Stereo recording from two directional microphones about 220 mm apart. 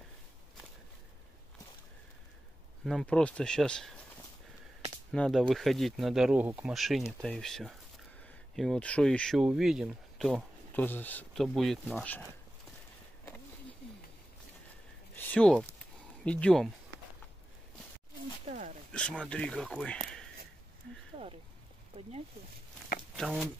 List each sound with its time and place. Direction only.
2.8 s speech: centre (ahead or behind)
5.1 s speech: 5° left (ahead or behind)
15.1 s a sound: 5° left (ahead or behind)
16.3 s speech: 5° left (ahead or behind)
18.5 s a sound: 35° right (ahead or behind)
18.9 s speech: 5° left (ahead or behind)
21.2 s a sound: 25° right (ahead or behind)
21.9 s speech: 25° right (ahead or behind)
23.1 s speech: centre (ahead or behind)